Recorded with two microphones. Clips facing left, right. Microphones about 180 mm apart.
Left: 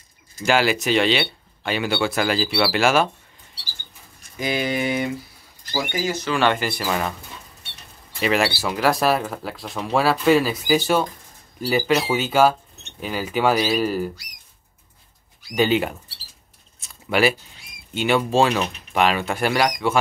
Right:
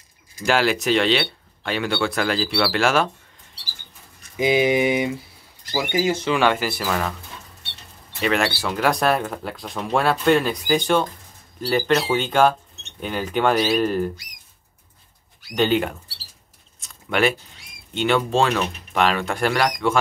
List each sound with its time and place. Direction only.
0.5 s speech: centre (ahead or behind)
4.4 s speech: 15° right (ahead or behind)
6.4 s speech: 5° right (ahead or behind)
8.2 s speech: 5° left (ahead or behind)
15.5 s speech: 5° left (ahead or behind)
16.8 s a sound: 5° left (ahead or behind)
17.9 s speech: 5° left (ahead or behind)